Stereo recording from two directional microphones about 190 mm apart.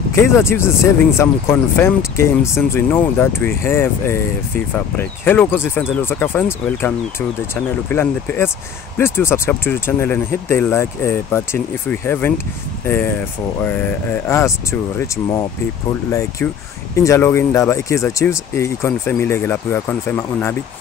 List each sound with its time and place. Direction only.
0.1 s speech: 15° left (ahead or behind)